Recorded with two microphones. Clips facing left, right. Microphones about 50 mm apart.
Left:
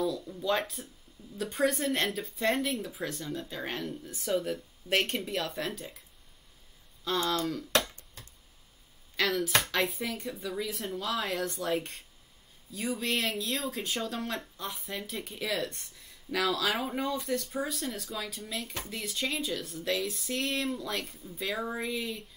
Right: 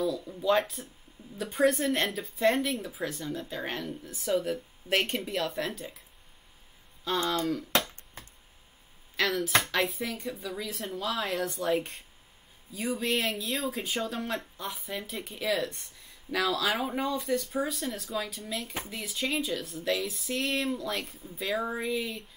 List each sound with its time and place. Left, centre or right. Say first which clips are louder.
0.0 s speech: right 2 dB; centre
7.2 s speech: right 2 dB; centre
7.9 s finger snapping: right 3 dB; right
9.1 s speech: right 1 dB; centre